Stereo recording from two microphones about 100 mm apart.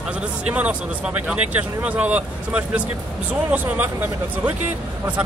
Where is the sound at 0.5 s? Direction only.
15° right (ahead or behind).